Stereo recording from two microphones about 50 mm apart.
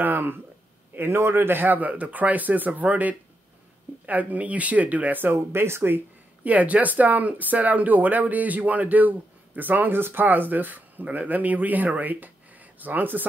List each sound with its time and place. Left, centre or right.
0.0 s speech: right
5.2 s speech: right
5.9 s speech: right